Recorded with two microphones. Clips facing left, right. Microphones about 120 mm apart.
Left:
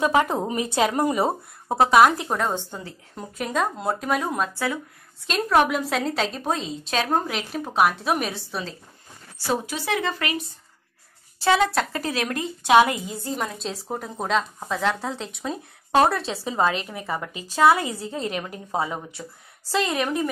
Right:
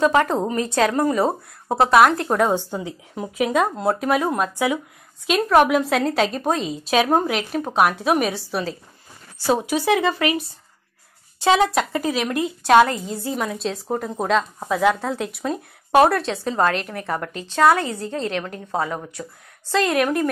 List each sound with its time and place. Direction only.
0.0 s a woman's voice: 10° left (ahead or behind)
1.1 s speech: centre (ahead or behind)
2.2 s speech: 10° right (ahead or behind)
9.8 s speech: 15° right (ahead or behind)
11.4 s speech: 20° right (ahead or behind)
12.7 s a woman's voice: 10° left (ahead or behind)
13.2 s a woman's voice: centre (ahead or behind)